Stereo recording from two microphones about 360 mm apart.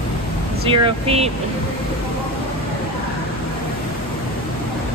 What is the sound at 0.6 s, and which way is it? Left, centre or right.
Speech, centre.